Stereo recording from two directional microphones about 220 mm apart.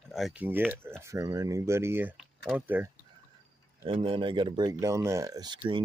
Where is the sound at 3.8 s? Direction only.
25° right (ahead or behind).